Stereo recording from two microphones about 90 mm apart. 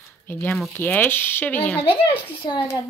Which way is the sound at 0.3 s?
25° left (ahead or behind).